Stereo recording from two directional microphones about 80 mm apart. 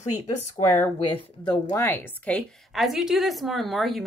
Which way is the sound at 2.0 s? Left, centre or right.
Centre.